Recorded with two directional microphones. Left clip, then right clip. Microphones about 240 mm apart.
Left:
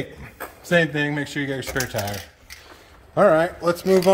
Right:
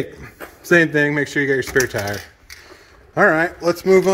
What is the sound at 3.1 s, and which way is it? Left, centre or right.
Speech, centre.